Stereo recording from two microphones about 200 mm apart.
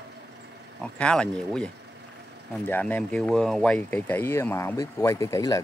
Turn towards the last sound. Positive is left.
turn(degrees=15)  # may be behind; listen again after turning